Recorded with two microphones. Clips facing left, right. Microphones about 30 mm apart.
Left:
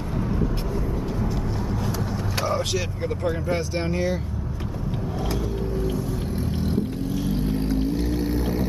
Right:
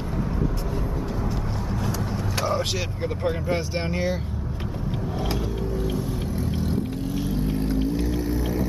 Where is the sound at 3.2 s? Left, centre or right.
Centre.